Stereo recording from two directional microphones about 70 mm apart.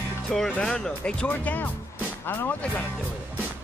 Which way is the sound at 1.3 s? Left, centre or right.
Left.